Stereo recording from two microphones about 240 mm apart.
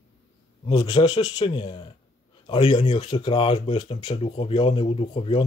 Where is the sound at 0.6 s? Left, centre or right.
Centre.